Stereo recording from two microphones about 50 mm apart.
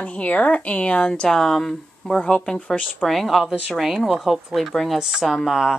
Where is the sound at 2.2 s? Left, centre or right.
Left.